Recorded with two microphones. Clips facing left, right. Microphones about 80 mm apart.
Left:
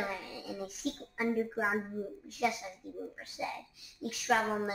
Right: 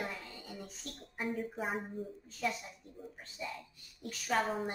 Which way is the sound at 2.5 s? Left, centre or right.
Centre.